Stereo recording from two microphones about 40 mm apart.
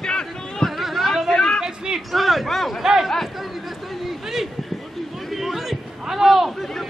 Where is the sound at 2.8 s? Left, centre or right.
Centre.